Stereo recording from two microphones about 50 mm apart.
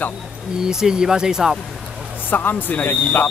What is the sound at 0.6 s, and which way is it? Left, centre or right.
Speech, centre.